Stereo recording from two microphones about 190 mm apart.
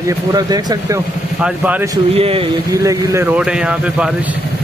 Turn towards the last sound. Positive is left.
turn(degrees=-5)  # may be behind; listen again after turning